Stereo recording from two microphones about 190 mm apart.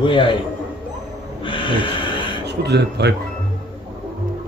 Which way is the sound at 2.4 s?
60° right (ahead or behind).